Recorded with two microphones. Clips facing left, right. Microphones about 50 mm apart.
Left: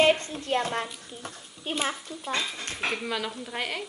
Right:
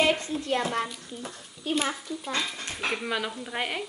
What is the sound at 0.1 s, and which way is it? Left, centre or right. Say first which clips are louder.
A woman's voice: left 1 dB; left.